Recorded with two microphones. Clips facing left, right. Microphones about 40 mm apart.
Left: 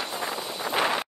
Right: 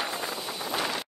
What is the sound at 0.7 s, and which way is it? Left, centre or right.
Wind noise, left.